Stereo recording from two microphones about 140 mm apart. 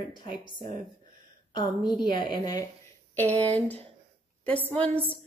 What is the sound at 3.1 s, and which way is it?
Speech, 15° left (ahead or behind).